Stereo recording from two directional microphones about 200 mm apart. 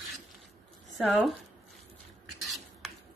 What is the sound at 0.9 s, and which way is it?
Speech, centre (ahead or behind).